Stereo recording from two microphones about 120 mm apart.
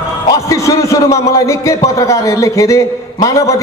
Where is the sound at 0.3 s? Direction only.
25° left (ahead or behind).